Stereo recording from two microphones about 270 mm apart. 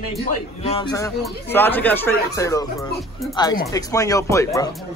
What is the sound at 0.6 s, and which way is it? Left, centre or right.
Speech, left.